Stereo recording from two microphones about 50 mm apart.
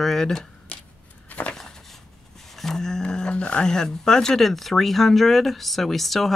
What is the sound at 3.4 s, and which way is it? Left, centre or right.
Speech, left.